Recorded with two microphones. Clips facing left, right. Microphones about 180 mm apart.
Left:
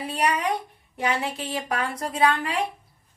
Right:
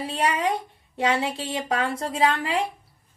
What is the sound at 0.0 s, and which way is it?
A woman's voice, 25° right (ahead or behind).